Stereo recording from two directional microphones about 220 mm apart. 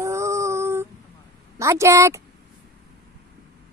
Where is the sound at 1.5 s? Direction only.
15° right (ahead or behind).